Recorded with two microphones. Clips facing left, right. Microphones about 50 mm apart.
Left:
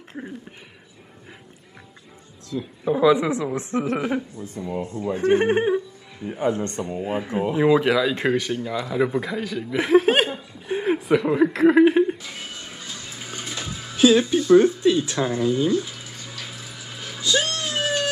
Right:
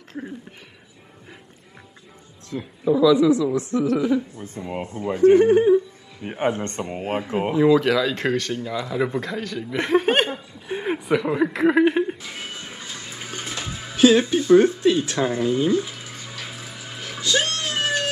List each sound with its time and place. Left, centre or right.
0.2 s speech: centre
2.8 s speech: left
4.8 s a man's voice: right
5.1 s speech: left
6.2 s a man's voice: right
7.5 s speech: left; by 10.3 s centre
10.3 s chuckle: centre
17.2 s music: centre